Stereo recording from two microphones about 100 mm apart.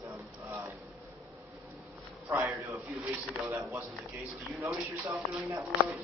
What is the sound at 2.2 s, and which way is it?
A man's voice, 20° right (ahead or behind).